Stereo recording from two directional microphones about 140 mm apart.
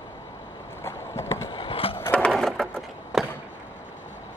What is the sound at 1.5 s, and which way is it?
Skateboard, 40° left (ahead or behind).